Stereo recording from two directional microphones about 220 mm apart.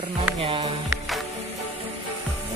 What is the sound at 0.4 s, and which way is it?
Speech, 25° right (ahead or behind).